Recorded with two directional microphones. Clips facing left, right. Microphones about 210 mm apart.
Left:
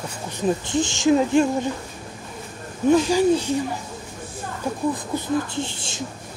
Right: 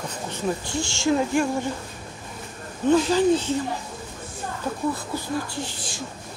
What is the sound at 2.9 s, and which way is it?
Speech, 10° left (ahead or behind).